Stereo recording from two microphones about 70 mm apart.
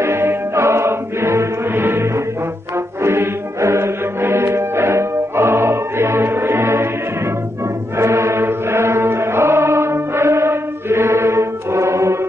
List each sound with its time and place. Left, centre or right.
0.0 s music: right
8.0 s chant: right